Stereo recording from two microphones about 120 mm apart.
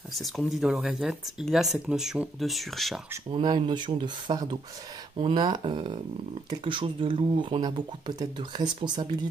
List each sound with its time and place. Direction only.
0.1 s speech: centre (ahead or behind)
3.3 s speech: 40° right (ahead or behind)